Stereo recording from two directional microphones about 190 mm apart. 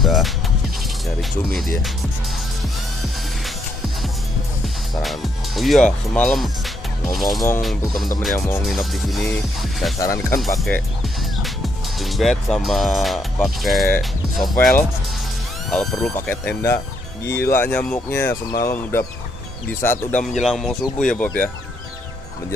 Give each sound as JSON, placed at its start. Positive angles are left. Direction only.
{"t": 0.0, "sound": "music", "side_deg": 0}
{"t": 1.0, "sound": "speech", "side_deg": 0}
{"t": 5.0, "sound": "speech", "side_deg": 0}
{"t": 9.9, "sound": "speech", "side_deg": 15}